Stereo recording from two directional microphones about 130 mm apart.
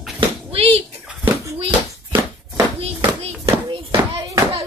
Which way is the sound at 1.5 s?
45° right (ahead or behind).